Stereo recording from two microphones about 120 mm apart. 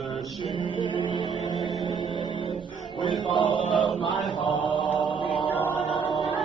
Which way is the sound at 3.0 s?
40° left (ahead or behind).